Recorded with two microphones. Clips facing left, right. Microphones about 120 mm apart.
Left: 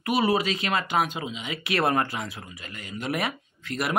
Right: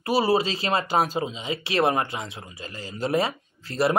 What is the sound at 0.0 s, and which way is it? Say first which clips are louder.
Speech: right 2 dB; 30° right (ahead or behind).